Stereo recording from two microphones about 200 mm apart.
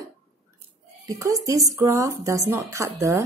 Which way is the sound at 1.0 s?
15° right (ahead or behind).